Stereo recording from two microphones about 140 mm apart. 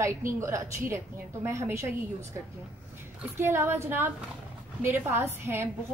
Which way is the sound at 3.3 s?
15° right (ahead or behind).